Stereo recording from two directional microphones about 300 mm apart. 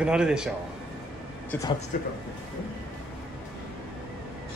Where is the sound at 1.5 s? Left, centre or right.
Centre.